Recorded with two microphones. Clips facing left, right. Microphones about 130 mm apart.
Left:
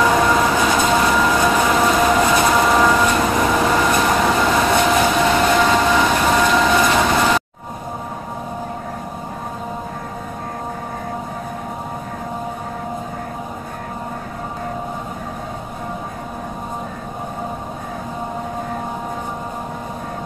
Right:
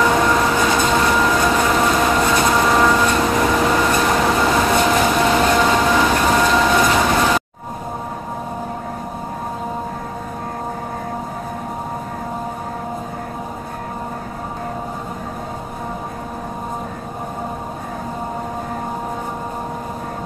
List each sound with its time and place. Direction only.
0.0 s train: 5° left (ahead or behind)